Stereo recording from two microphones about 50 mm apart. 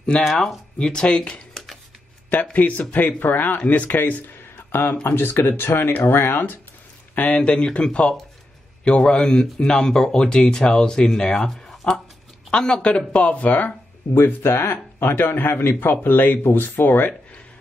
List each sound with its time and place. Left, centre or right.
0.2 s speech: centre
0.7 s speech: centre
2.5 s speech: left
7.2 s speech: left
7.5 s speech: centre
12.4 s speech: centre; by 13.7 s left
14.1 s speech: left